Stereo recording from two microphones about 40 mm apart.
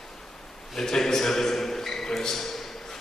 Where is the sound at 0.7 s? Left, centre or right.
Centre.